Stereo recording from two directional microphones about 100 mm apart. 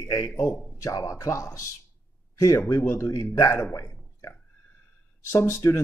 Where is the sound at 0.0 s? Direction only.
35° left (ahead or behind).